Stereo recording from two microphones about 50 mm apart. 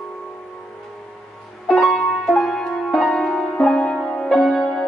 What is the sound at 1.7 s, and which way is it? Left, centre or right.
Music, centre.